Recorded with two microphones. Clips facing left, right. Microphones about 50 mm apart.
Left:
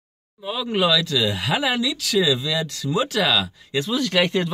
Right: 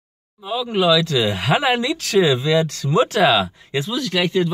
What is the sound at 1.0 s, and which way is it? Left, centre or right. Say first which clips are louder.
Speech: right 3 dB; right.